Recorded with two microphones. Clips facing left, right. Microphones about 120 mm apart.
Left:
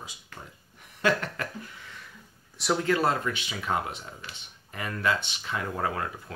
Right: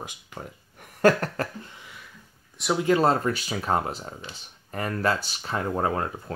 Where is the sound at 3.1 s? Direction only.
40° right (ahead or behind).